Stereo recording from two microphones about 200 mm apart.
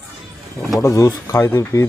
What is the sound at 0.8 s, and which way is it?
Speech, 15° left (ahead or behind).